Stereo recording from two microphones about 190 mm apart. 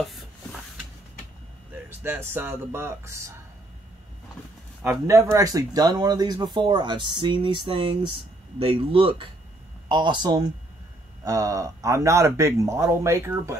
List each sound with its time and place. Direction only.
0.0 s a sound: centre (ahead or behind)
1.9 s speech: 10° right (ahead or behind)
4.8 s speech: 15° right (ahead or behind)